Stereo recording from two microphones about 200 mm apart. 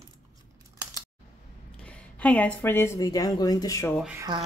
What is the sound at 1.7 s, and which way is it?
Speech, 5° left (ahead or behind).